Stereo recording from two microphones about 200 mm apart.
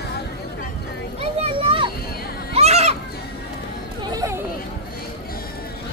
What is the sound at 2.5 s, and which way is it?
Goat, 30° right (ahead or behind).